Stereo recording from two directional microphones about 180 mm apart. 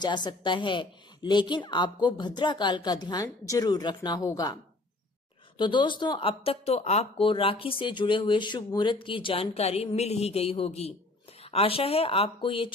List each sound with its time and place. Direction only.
0.0 s a woman's voice: 25° left (ahead or behind)
5.6 s a woman's voice: 25° left (ahead or behind)